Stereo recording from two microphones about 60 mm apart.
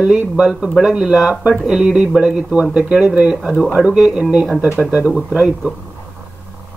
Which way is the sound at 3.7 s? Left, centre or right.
Centre.